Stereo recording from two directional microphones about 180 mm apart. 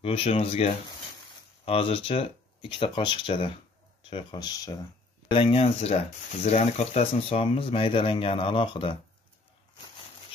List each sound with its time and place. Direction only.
0.0 s speech: 30° left (ahead or behind)